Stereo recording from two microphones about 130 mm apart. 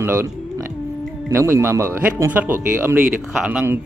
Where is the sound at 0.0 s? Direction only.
20° right (ahead or behind).